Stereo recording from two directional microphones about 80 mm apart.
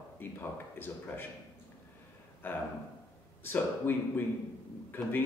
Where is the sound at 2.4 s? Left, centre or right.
Left.